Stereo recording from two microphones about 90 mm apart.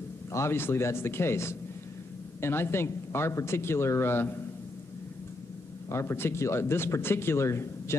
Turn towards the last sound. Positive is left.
turn(degrees=30)  # may be behind; listen again after turning